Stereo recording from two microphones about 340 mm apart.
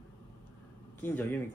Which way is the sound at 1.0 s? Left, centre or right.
Centre.